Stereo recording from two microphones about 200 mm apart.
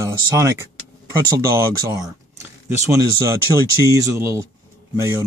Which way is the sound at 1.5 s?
15° right (ahead or behind).